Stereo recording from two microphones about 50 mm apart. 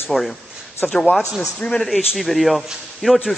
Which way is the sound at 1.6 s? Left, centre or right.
Centre.